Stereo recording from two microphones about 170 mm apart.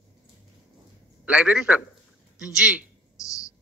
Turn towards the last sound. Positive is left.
turn(degrees=20)  # may be behind; listen again after turning